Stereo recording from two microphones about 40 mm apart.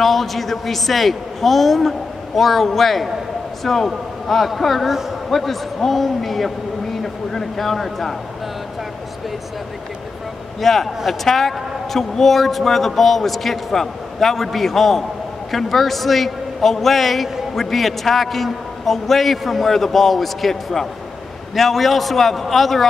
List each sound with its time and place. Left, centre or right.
0.0 s a man's voice: centre
10.6 s a man's voice: centre